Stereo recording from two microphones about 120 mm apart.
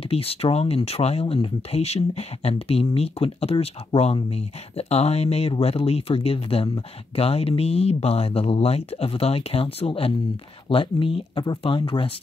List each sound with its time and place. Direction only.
0.0 s speech: 55° left (ahead or behind)
1.2 s speech: 50° left (ahead or behind)